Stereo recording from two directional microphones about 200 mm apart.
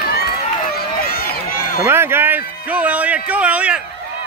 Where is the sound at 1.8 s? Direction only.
10° right (ahead or behind).